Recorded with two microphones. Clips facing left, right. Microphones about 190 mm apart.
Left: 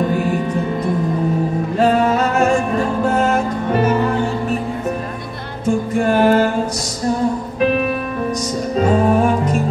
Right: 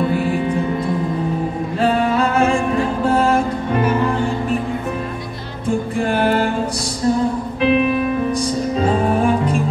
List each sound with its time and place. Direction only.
1.8 s music: 45° left (ahead or behind)
6.0 s music: 40° left (ahead or behind)
7.6 s music: 45° left (ahead or behind)
9.2 s music: 40° left (ahead or behind)